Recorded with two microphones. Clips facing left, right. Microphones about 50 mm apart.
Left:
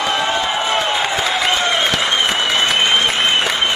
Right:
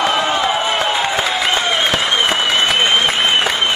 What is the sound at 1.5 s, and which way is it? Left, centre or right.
Applause, centre.